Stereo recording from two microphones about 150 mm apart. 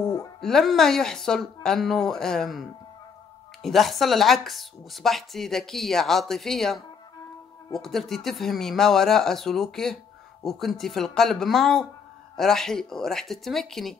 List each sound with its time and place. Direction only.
0.0 s music: 25° left (ahead or behind)
0.4 s speech: centre (ahead or behind)